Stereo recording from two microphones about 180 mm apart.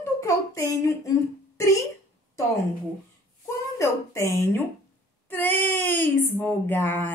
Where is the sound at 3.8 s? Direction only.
15° left (ahead or behind).